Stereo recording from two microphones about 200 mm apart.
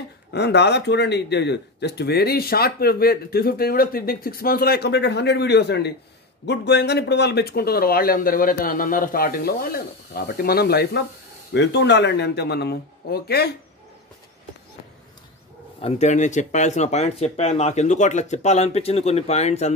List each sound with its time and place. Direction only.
0.3 s speech: 55° left (ahead or behind)
15.8 s speech: 35° left (ahead or behind)